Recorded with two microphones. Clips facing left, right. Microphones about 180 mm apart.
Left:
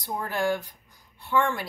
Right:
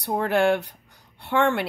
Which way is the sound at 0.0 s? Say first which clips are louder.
Right 7 dB; 70° right (ahead or behind).